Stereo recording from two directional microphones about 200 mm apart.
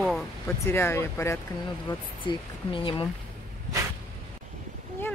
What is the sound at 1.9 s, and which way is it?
Speech, 25° left (ahead or behind).